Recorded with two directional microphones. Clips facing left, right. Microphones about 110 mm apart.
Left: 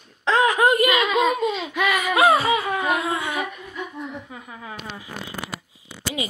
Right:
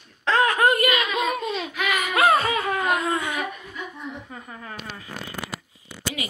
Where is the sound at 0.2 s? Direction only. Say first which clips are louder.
Left 1 dB; 15° left (ahead or behind).